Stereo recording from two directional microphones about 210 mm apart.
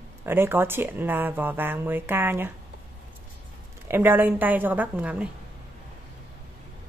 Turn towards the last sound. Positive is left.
turn(degrees=-5)  # may be behind; listen again after turning